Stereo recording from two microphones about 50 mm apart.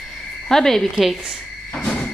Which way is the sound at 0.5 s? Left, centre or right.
Centre.